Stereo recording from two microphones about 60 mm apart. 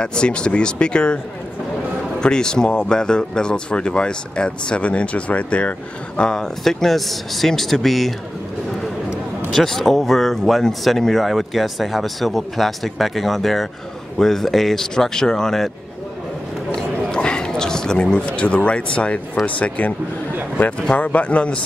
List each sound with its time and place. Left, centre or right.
0.0 s speech: centre
9.5 s speech: centre
17.1 s a sound: centre
18.7 s speech: centre